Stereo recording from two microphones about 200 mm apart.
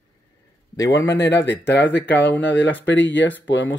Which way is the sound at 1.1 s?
60° left (ahead or behind).